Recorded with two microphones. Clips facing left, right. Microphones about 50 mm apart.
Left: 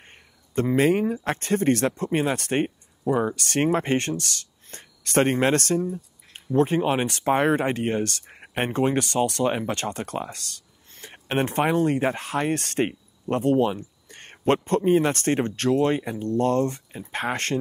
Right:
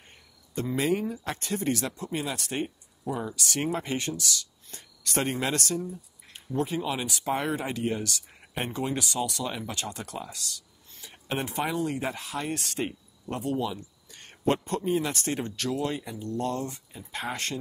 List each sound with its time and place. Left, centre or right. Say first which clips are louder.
0.0 s speech: left 4 dB; left